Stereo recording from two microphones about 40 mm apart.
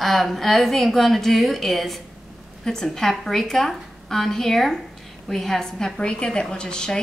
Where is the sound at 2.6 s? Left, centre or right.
Centre.